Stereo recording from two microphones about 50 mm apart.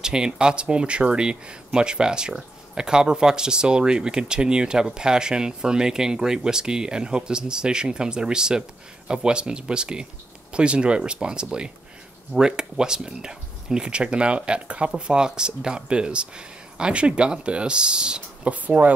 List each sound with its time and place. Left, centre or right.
0.0 s speech: centre
18.5 s speech: right